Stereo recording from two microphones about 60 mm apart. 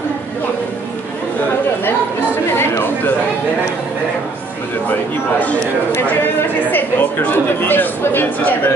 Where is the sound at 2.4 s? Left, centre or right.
Left.